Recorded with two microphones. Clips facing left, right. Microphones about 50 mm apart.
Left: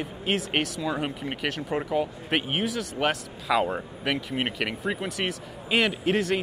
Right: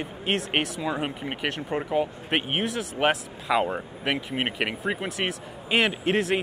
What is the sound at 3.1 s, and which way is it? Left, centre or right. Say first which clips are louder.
Speech: even; centre.